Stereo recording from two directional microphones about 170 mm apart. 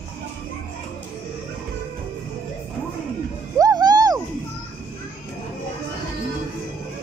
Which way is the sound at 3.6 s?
20° right (ahead or behind).